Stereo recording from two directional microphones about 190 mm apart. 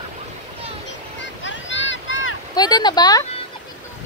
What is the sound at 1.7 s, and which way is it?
Boat, 75° left (ahead or behind).